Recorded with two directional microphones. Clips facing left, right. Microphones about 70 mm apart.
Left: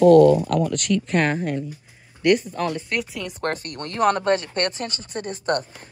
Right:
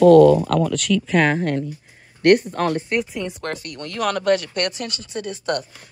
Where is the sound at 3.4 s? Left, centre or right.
Left.